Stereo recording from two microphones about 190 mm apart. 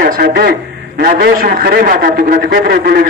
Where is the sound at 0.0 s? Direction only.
55° right (ahead or behind).